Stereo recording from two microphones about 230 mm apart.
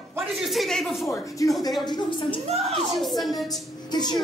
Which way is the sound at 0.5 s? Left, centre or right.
Centre.